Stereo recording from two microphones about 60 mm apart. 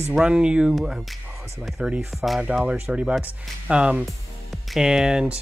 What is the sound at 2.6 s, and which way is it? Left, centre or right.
Speech, centre.